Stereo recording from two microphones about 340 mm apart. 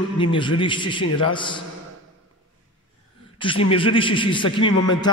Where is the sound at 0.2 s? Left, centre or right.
Centre.